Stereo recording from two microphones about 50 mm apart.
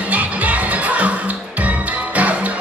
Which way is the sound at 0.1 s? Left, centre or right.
Right.